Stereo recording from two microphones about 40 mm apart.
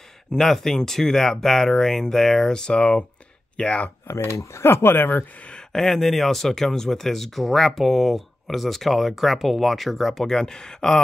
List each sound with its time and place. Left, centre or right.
0.4 s speech: centre
2.7 s speech: left
4.2 s speech: left
5.7 s speech: centre
10.2 s speech: centre